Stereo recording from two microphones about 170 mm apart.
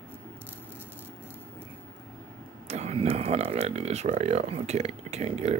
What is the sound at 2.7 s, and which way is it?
Speech, 40° right (ahead or behind).